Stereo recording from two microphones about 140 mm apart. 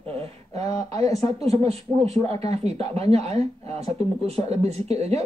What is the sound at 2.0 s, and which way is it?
Speech, 45° right (ahead or behind).